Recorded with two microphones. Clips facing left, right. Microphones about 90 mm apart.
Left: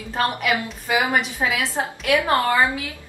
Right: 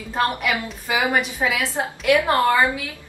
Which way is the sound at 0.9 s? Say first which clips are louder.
Even; 15° left (ahead or behind).